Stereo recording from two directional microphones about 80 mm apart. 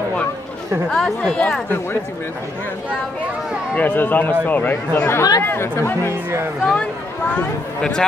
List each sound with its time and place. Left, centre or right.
0.8 s speech: centre
3.7 s speech: left
6.6 s speech: centre